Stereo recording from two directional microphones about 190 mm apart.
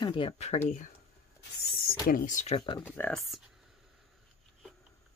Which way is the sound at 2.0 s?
45° left (ahead or behind).